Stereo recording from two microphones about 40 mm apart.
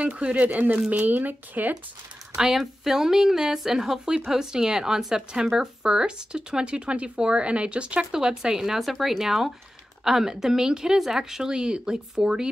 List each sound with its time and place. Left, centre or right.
0.0 s speech: right
0.5 s speech: right
2.5 s speech: centre; by 8.1 s right
8.1 s speech: centre